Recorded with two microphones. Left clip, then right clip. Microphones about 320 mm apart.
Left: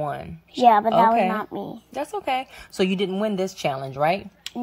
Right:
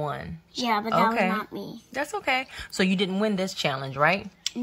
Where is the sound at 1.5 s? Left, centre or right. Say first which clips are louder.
Left 5 dB; left.